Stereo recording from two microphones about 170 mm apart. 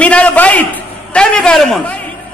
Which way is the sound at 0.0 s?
10° left (ahead or behind).